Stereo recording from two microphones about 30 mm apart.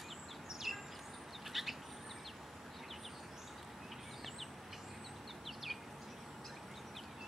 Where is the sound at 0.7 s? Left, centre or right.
Centre.